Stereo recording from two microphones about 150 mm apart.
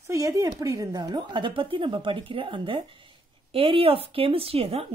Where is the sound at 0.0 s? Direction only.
20° right (ahead or behind).